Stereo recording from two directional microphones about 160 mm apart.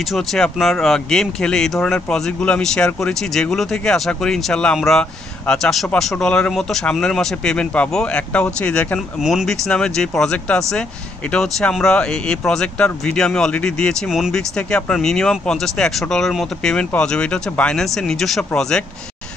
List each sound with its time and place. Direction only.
0.1 s speech: centre (ahead or behind)